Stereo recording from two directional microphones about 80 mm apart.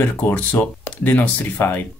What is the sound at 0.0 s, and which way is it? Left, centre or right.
Speech, left.